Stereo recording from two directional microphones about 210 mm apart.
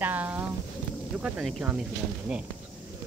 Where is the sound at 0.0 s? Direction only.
10° right (ahead or behind).